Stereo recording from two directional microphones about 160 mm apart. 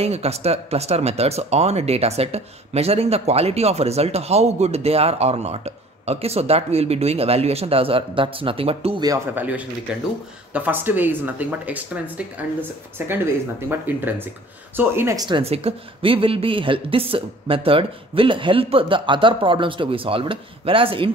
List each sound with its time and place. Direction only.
0.0 s speech: 40° right (ahead or behind)
9.0 s speech: 20° right (ahead or behind)
15.2 s speech: 35° right (ahead or behind)